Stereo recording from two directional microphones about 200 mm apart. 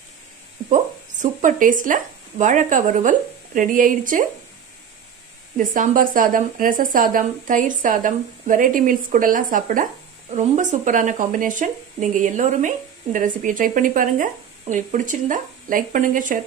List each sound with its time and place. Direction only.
1.2 s speech: 40° right (ahead or behind)
5.6 s speech: 45° right (ahead or behind)